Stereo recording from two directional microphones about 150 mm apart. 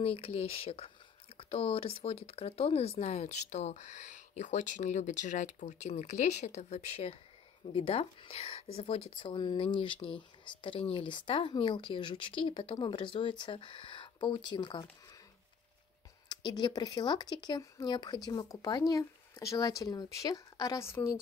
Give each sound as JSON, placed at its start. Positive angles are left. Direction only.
{"t": 0.0, "sound": "speech", "side_deg": 40}
{"t": 9.3, "sound": "speech", "side_deg": 30}
{"t": 16.3, "sound": "speech", "side_deg": 30}